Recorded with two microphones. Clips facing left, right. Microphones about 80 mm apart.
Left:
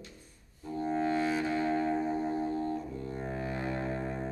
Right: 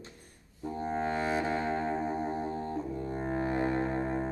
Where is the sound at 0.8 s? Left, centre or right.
Right.